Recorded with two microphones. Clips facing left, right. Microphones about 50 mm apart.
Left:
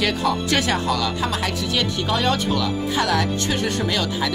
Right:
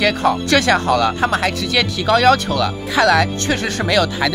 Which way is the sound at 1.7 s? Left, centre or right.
Right.